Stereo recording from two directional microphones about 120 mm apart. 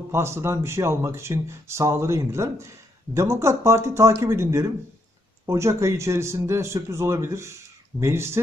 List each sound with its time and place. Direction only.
0.1 s a man's voice: 20° right (ahead or behind)